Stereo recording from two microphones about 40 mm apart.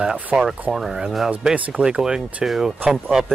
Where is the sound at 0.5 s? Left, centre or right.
Centre.